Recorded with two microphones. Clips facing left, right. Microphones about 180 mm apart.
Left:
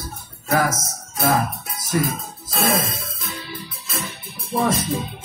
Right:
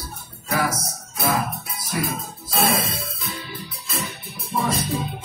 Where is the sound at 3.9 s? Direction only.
45° left (ahead or behind).